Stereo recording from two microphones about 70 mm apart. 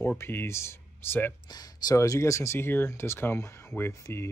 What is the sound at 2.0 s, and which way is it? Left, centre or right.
Speech, left.